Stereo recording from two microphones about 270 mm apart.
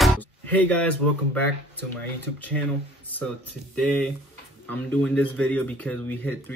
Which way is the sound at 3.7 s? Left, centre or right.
Centre.